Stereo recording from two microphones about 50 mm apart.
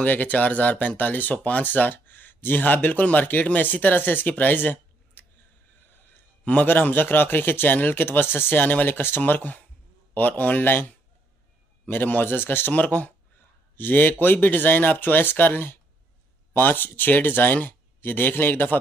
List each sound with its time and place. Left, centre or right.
0.0 s speech: left
6.6 s speech: left
9.2 s speech: left
11.9 s speech: left
12.7 s speech: left